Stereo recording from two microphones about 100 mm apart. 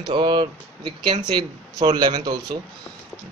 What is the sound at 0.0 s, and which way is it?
Speech, 50° right (ahead or behind).